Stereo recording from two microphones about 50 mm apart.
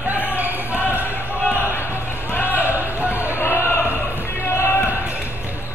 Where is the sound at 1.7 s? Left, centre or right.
Left.